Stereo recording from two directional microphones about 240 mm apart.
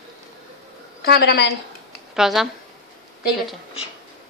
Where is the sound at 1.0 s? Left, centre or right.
Left.